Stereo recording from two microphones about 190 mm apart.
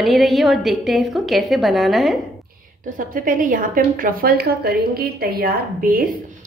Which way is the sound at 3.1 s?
45° right (ahead or behind).